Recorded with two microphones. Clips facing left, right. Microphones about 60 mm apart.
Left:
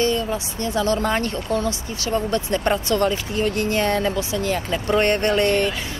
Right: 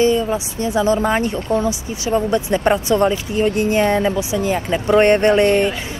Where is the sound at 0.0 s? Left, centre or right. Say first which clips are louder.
Right 5 dB; centre.